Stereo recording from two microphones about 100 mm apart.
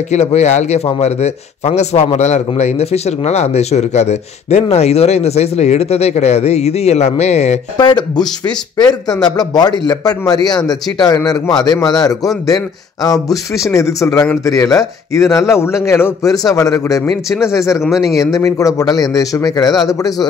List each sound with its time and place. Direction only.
0.2 s a man's voice: 90° left
7.7 s a man's voice: 50° left (ahead or behind)